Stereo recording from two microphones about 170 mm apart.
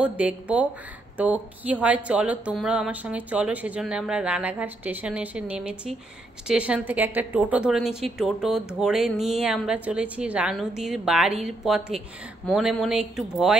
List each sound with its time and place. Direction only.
0.0 s a woman's voice: 10° right (ahead or behind)